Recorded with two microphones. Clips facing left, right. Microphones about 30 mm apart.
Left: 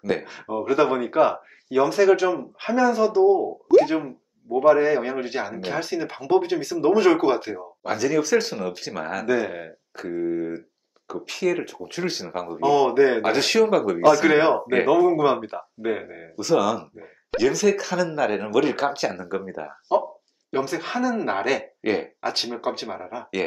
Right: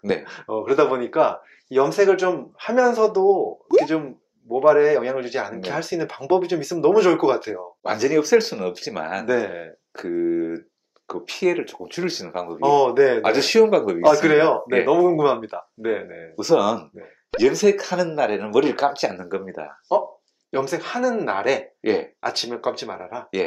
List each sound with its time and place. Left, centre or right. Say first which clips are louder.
0.0 s speech: right 2 dB; centre
3.7 s plop: left 1 dB; centre
4.6 s speech: right 2 dB; centre
7.8 s speech: right 3 dB; centre
9.3 s speech: right 1 dB; centre
14.2 s speech: right 2 dB; centre
16.3 s speech: right 3 dB; centre
22.2 s speech: right 1 dB; centre